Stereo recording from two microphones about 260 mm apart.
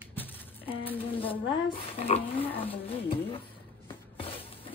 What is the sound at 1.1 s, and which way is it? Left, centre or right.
Speech, centre.